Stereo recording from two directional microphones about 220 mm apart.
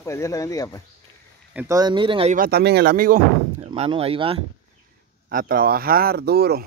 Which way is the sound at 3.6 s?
25° right (ahead or behind).